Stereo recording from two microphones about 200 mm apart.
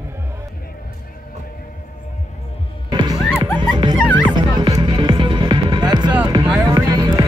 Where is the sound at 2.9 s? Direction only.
20° right (ahead or behind).